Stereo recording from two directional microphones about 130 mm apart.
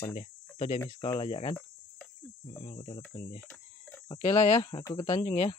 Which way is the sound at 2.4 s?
45° left (ahead or behind).